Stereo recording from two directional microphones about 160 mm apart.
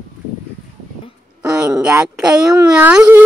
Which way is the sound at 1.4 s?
5° right (ahead or behind).